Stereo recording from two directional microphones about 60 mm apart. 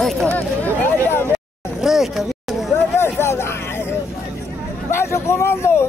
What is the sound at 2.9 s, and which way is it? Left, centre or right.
Hubbub, left.